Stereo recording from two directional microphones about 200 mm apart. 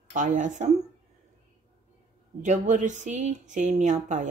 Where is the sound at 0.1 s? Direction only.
40° right (ahead or behind).